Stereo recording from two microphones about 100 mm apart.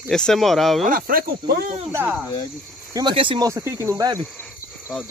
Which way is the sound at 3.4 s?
30° right (ahead or behind).